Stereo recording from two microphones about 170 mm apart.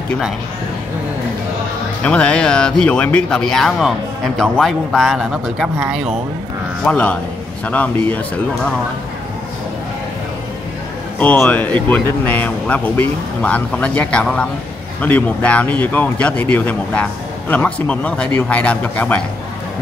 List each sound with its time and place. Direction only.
2.0 s speech: 5° left (ahead or behind)
6.8 s speech: 5° left (ahead or behind)
11.1 s speech: 10° left (ahead or behind)